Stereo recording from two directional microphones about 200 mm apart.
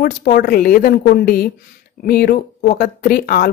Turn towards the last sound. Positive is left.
turn(degrees=50)  # may be behind; listen again after turning